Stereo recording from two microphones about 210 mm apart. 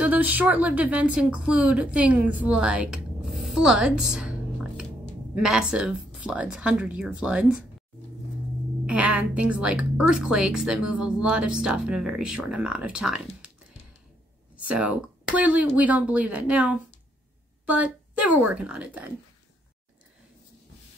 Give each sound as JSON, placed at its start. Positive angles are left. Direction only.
{"t": 0.0, "sound": "a woman's voice", "side_deg": -5}
{"t": 8.8, "sound": "a woman's voice", "side_deg": -5}
{"t": 14.6, "sound": "speech", "side_deg": -5}